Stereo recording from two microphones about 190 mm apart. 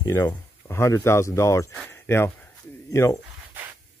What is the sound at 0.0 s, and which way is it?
Speech, 15° left (ahead or behind).